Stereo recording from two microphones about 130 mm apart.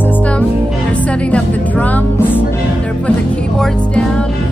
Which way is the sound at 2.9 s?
10° left (ahead or behind).